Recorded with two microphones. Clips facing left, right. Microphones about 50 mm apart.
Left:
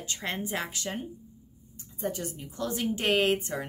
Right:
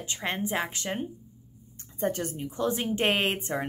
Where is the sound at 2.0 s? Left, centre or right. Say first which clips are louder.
Right 4 dB; right.